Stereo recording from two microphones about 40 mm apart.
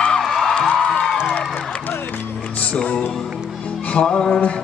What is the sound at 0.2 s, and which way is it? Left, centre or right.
Music, centre.